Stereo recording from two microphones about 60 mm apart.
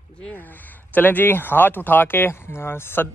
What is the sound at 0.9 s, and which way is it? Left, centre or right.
Speech, left.